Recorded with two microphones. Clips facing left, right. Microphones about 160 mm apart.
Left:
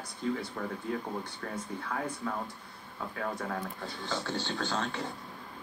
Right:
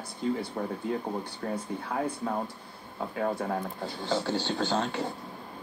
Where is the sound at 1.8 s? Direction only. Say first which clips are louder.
Right 4 dB; 30° right (ahead or behind).